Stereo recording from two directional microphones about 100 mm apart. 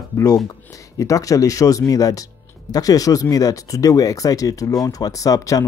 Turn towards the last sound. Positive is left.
turn(degrees=35)  # may be behind; listen again after turning